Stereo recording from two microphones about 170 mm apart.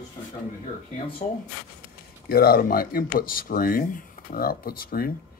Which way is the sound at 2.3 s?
60° left (ahead or behind).